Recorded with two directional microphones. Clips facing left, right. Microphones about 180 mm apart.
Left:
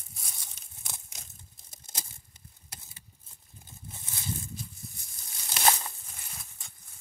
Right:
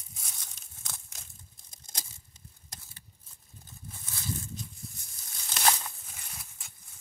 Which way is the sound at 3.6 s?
20° left (ahead or behind).